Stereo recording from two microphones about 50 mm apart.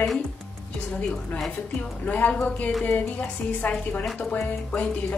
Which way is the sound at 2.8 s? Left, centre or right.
Left.